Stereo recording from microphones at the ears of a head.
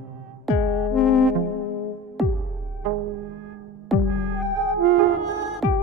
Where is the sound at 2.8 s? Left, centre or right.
Right.